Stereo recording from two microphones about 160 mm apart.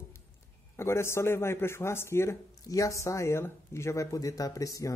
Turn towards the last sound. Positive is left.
turn(degrees=20)  # may be behind; listen again after turning